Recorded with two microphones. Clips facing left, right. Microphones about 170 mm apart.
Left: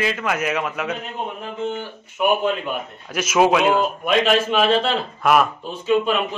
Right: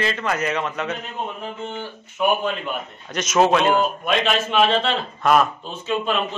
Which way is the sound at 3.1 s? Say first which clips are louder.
Left 1 dB; 10° left (ahead or behind).